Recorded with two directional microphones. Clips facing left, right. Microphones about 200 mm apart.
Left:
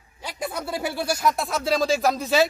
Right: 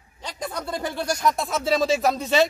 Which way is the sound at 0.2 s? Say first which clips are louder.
Left 1 dB; 5° left (ahead or behind).